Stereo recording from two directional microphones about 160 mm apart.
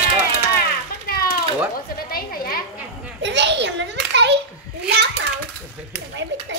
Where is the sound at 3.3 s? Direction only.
90° right.